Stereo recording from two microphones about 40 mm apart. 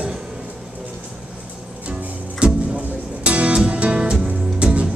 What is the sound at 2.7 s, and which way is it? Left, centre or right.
Music, right.